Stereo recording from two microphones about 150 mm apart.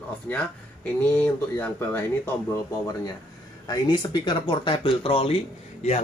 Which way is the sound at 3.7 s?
25° left (ahead or behind).